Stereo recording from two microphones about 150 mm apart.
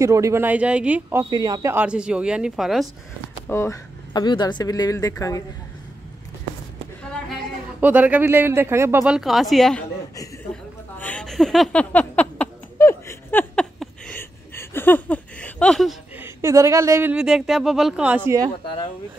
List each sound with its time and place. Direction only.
0.0 s speech: 20° right (ahead or behind)
1.3 s a man's voice: 25° right (ahead or behind)
1.7 s speech: 10° right (ahead or behind)
3.4 s speech: 20° left (ahead or behind)
7.8 s speech: 10° right (ahead or behind)
9.0 s speech: 5° right (ahead or behind)
10.5 s a sound: 10° left (ahead or behind)
14.5 s a sound: 15° left (ahead or behind)
16.2 s speech: 20° right (ahead or behind)
17.1 s speech: 5° right (ahead or behind)